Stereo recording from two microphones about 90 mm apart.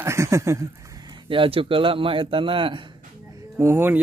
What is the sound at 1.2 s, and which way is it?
Speech, 80° right.